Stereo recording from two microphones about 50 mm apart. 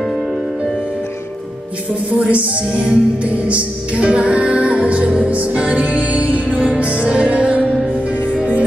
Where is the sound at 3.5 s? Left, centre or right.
Right.